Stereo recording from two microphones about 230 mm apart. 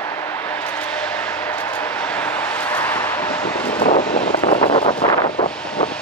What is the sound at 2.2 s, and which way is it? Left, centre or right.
Vehicle, centre.